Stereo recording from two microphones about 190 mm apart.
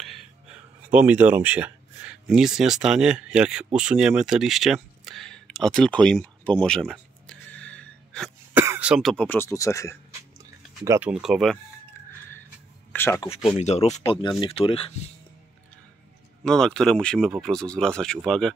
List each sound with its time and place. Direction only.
0.8 s speech: 10° right (ahead or behind)
6.6 s a sound: 5° left (ahead or behind)
8.5 s throat clearing: 10° right (ahead or behind)
9.1 s speech: 10° left (ahead or behind)
10.8 s speech: 15° right (ahead or behind)
11.1 s speech: 5° right (ahead or behind)
12.9 s speech: 10° left (ahead or behind)
13.2 s speech: 30° left (ahead or behind)
16.4 s speech: 5° left (ahead or behind)